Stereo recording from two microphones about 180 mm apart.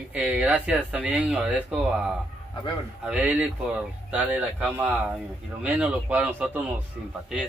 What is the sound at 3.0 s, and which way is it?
Speech, 10° right (ahead or behind).